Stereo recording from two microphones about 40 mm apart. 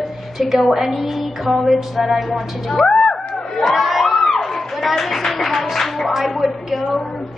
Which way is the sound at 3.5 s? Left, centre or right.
Centre.